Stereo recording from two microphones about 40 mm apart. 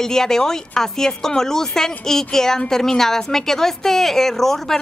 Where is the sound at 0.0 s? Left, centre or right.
Centre.